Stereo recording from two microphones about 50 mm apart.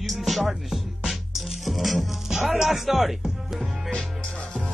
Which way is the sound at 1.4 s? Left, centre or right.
Centre.